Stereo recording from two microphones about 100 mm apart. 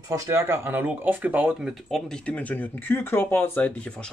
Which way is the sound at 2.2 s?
15° left (ahead or behind).